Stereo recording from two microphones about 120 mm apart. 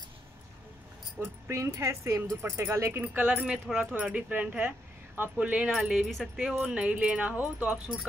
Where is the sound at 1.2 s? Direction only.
20° right (ahead or behind).